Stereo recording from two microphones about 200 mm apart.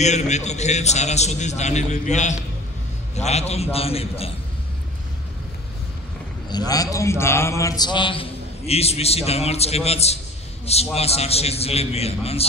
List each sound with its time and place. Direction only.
0.0 s a man's voice: 35° left (ahead or behind)
6.5 s a man's voice: 20° left (ahead or behind)